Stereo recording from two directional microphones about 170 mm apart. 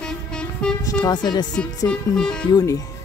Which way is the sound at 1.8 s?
5° left (ahead or behind).